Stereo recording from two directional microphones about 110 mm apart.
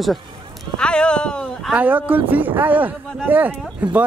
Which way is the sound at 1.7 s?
15° right (ahead or behind).